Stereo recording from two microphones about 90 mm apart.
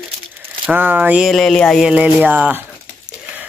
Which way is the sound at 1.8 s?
15° right (ahead or behind).